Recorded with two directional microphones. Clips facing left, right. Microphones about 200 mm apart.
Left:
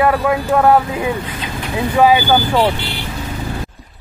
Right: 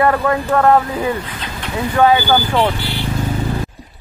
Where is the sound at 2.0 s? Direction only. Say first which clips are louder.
Left 1 dB; 10° left (ahead or behind).